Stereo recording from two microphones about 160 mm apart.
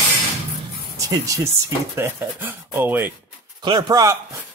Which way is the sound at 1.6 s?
15° right (ahead or behind).